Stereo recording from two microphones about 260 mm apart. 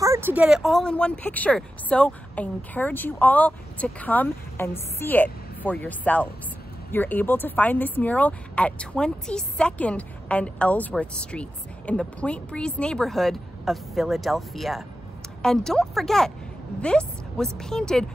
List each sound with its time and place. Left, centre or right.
0.0 s speech: centre